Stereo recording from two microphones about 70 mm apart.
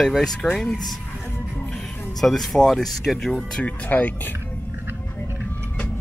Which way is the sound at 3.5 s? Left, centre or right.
Centre.